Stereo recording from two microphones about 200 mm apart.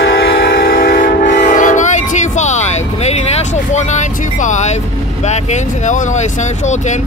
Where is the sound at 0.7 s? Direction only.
45° left (ahead or behind).